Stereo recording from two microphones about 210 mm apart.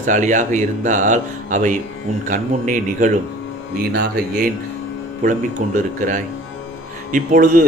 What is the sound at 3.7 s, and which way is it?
Speech, 45° right (ahead or behind).